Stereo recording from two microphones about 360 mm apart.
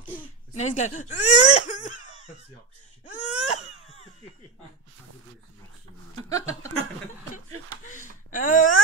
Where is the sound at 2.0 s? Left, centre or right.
Centre.